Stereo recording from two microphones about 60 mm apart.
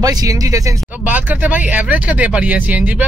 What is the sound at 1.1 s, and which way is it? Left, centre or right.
Speech, right.